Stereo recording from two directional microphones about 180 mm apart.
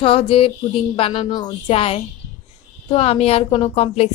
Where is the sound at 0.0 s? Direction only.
30° left (ahead or behind).